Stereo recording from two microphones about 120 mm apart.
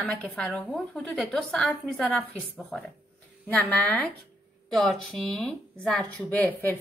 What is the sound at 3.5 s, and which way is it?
Speech, 15° left (ahead or behind).